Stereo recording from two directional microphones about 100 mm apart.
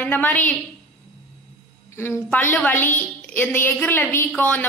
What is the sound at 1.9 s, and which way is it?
A woman's voice, 25° left (ahead or behind).